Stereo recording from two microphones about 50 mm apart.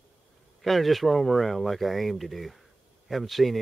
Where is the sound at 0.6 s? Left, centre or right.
Centre.